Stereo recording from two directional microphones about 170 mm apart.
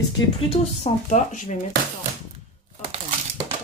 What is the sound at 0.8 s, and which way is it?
Speech, 45° left (ahead or behind).